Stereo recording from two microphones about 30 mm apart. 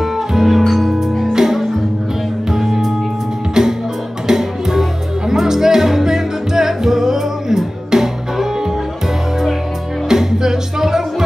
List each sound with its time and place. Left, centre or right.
0.0 s music: centre
10.0 s music: centre